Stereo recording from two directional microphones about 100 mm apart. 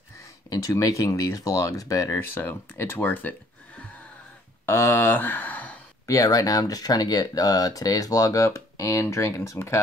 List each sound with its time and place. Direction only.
0.5 s speech: 35° left (ahead or behind)
2.3 s speech: 20° left (ahead or behind)
6.0 s speech: 35° left (ahead or behind)